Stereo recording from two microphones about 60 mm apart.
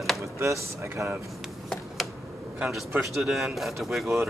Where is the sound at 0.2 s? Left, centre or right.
Right.